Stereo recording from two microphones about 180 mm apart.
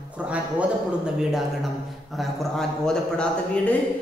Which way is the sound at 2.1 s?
Centre (ahead or behind).